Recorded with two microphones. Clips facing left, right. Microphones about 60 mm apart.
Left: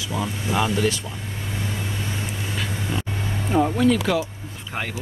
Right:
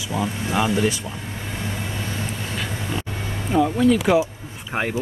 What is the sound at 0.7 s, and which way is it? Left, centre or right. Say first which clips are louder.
Speech: right 3 dB; centre.